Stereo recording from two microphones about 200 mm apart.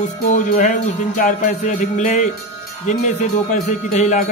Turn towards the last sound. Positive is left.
turn(degrees=35)  # may be behind; listen again after turning